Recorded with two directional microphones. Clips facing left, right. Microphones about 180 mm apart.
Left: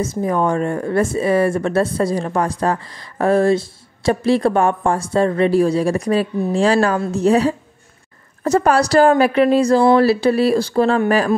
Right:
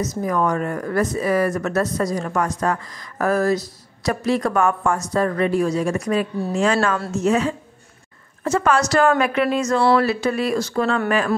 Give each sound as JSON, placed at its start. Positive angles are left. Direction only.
{"t": 0.0, "sound": "a woman's voice", "side_deg": 30}